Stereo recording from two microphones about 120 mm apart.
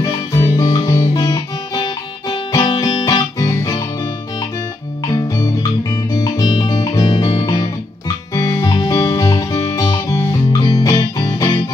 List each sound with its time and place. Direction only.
0.0 s guitar: 30° left (ahead or behind)
5.0 s music: 30° left (ahead or behind)